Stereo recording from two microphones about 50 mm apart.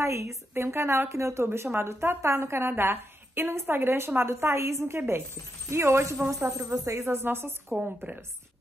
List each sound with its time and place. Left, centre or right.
0.0 s speech: right
1.7 s a woman's voice: right